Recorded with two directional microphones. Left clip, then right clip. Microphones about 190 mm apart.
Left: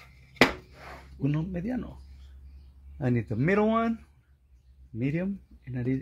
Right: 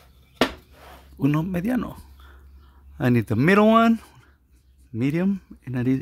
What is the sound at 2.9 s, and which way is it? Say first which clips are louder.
Speech: right 8 dB; 60° right (ahead or behind).